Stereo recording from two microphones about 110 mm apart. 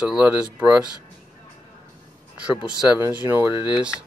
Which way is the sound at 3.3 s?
20° right (ahead or behind).